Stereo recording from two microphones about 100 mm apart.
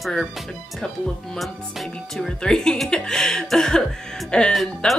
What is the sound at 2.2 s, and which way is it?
Speech, 5° left (ahead or behind).